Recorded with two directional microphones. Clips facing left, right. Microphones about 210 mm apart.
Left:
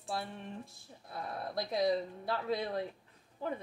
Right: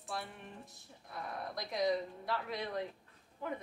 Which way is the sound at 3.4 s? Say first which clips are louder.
Left 3 dB; 30° left (ahead or behind).